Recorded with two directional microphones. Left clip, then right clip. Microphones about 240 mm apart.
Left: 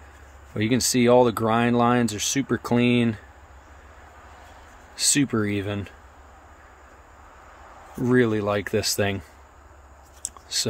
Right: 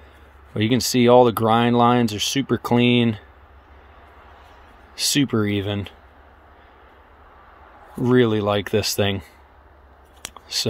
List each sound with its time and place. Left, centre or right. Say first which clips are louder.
0.6 s speech: right 3 dB; right
4.9 s speech: right 2 dB; right
8.0 s speech: right 3 dB; right
10.2 s a sound: right 3 dB; right